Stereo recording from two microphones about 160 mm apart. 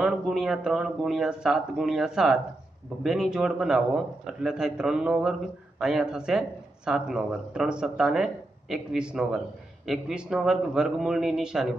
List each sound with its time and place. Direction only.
0.0 s speech: centre (ahead or behind)